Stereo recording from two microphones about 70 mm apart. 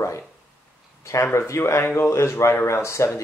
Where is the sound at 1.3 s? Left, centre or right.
Left.